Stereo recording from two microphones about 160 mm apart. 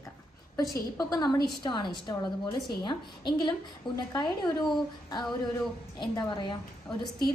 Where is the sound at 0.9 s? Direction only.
25° left (ahead or behind).